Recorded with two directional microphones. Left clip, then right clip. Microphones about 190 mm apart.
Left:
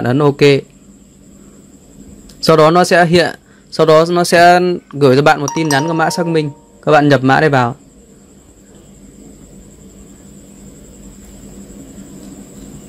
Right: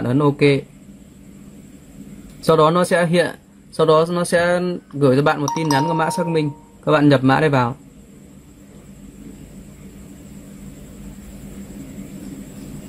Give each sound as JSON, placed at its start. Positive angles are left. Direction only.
{"t": 0.0, "sound": "speech", "side_deg": 30}
{"t": 2.4, "sound": "speech", "side_deg": 30}